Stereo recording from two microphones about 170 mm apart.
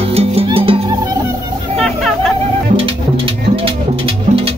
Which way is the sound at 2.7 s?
30° right (ahead or behind).